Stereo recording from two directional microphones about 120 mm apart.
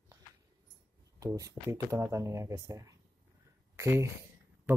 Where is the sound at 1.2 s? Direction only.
30° right (ahead or behind).